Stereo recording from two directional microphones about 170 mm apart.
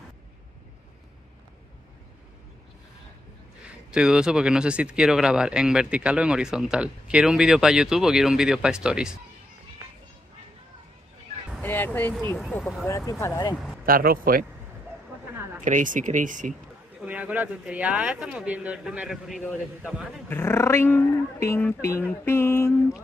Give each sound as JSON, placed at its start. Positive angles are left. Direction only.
{"t": 3.9, "sound": "speech", "side_deg": -5}
{"t": 11.6, "sound": "a sound", "side_deg": 10}
{"t": 12.4, "sound": "speech", "side_deg": 0}
{"t": 12.8, "sound": "speech", "side_deg": 15}
{"t": 13.8, "sound": "speech", "side_deg": -60}
{"t": 15.6, "sound": "speech", "side_deg": -50}
{"t": 17.0, "sound": "speech", "side_deg": -10}
{"t": 19.4, "sound": "speech", "side_deg": 10}